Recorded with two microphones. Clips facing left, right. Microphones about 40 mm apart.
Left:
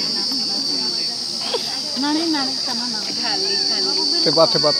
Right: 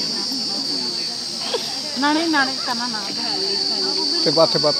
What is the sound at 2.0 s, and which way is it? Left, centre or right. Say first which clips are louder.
Speech: right 3 dB; right.